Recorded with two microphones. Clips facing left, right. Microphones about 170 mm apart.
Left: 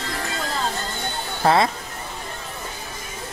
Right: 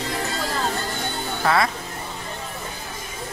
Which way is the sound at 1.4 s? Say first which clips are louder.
Left 3 dB; 25° left (ahead or behind).